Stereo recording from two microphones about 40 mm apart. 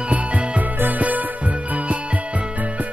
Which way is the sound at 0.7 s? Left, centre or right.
Right.